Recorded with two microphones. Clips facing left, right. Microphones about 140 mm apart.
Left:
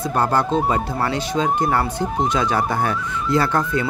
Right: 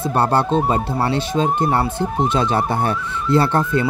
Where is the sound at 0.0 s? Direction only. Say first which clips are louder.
Right 2 dB; 30° right (ahead or behind).